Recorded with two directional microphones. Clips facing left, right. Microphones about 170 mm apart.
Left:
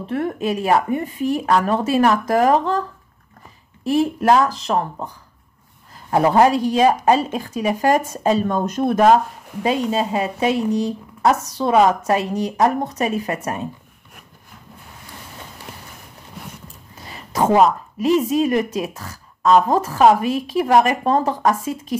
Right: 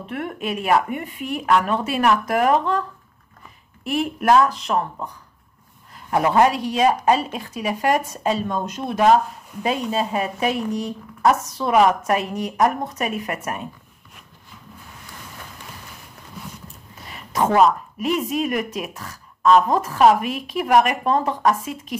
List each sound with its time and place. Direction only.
0.1 s speech: 35° left (ahead or behind)
3.8 s speech: 35° left (ahead or behind)
9.6 s speech: 25° left (ahead or behind)
17.0 s a sound: 35° left (ahead or behind)
17.5 s speech: 25° left (ahead or behind)
21.5 s speech: 25° left (ahead or behind)